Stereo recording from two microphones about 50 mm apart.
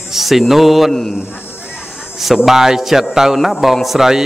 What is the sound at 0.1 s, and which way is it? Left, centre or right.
Speech, centre.